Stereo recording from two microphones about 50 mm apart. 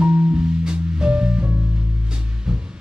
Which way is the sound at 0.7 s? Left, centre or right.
Centre.